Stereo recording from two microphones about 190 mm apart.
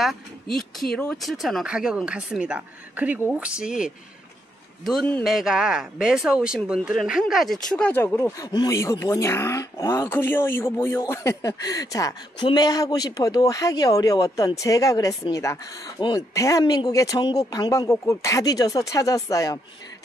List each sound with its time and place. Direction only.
0.0 s speech: centre (ahead or behind); by 19.6 s 20° left (ahead or behind)